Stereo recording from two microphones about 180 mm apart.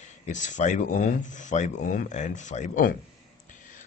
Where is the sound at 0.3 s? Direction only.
45° left (ahead or behind).